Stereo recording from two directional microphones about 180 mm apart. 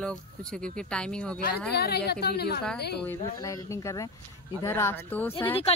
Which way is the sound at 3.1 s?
20° left (ahead or behind).